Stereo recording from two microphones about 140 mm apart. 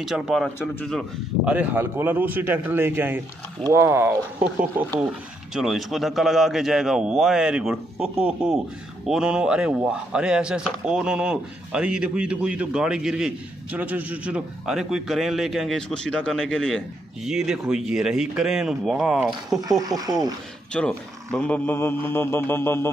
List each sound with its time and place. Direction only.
0.0 s speech: 5° right (ahead or behind)
1.4 s a man's voice: 10° right (ahead or behind)
19.6 s speech: 25° right (ahead or behind)
20.7 s speech: 5° left (ahead or behind)